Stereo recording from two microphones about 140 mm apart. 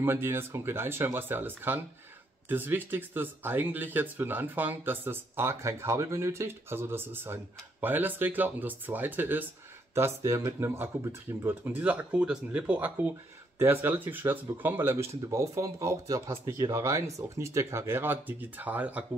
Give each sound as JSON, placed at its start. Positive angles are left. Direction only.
{"t": 0.0, "sound": "speech", "side_deg": -15}